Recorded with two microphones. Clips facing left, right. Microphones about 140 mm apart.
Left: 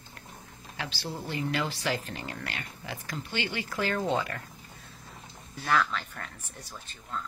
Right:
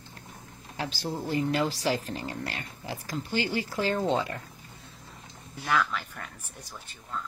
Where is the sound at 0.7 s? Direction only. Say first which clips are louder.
Right 4 dB; 45° right (ahead or behind).